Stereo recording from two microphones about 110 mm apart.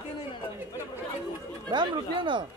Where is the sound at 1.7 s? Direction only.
45° right (ahead or behind).